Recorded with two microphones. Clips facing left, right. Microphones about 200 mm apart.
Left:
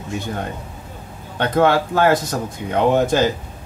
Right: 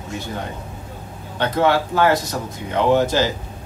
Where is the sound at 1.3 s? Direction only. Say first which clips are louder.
Left 2 dB; 50° left (ahead or behind).